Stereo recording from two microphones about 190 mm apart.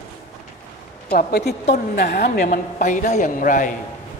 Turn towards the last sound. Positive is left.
turn(degrees=45)  # may be behind; listen again after turning